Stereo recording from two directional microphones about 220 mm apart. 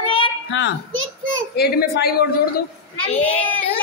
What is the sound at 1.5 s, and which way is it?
Speech, 45° left (ahead or behind).